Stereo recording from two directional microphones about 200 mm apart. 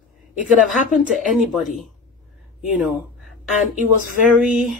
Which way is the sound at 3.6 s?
40° left (ahead or behind).